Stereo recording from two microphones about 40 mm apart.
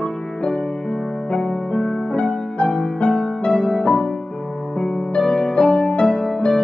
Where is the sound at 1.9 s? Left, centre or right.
Left.